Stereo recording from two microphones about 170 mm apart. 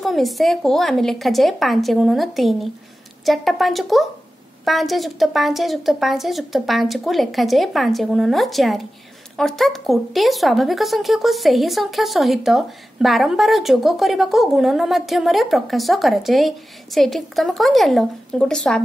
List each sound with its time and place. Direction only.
0.0 s speech: centre (ahead or behind)